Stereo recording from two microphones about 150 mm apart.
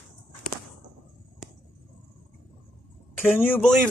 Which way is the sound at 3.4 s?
15° left (ahead or behind).